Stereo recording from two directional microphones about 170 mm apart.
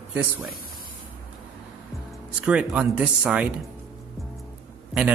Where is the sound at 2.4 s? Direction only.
5° right (ahead or behind).